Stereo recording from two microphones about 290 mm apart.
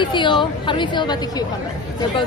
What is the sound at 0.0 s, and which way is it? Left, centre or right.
A woman's voice, centre.